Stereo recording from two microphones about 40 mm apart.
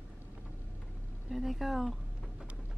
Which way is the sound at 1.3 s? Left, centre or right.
Centre.